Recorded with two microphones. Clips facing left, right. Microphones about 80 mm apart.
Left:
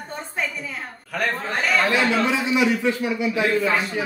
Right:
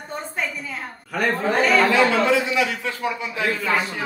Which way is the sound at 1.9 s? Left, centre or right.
Right.